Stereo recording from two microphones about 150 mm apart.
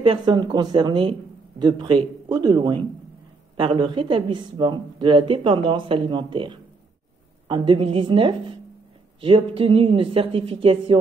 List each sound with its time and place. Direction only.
0.0 s speech: 30° right (ahead or behind)